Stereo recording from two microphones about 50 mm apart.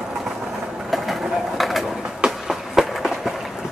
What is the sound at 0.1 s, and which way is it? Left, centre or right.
Vehicle, centre.